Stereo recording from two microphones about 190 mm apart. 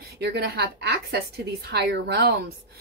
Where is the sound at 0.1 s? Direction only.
55° right (ahead or behind).